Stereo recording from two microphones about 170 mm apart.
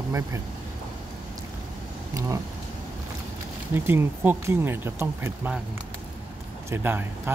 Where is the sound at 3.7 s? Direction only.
15° right (ahead or behind).